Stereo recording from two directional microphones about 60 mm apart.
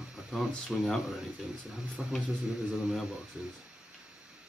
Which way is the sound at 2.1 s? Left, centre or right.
Centre.